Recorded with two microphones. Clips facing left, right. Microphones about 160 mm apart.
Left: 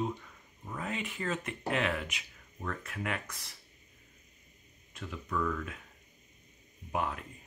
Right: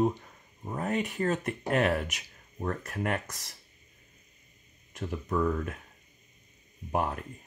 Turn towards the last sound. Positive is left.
turn(degrees=-45)  # may be behind; listen again after turning